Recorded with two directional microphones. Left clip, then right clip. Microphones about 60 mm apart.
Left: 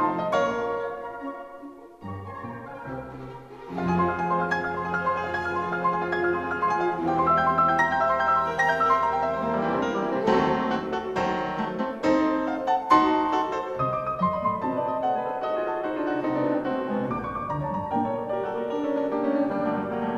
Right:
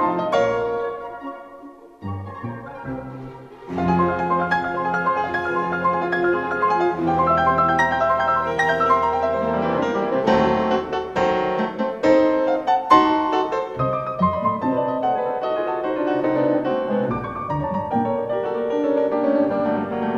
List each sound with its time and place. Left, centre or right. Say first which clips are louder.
0.0 s music: right 5 dB; centre
3.7 s music: right 5 dB; right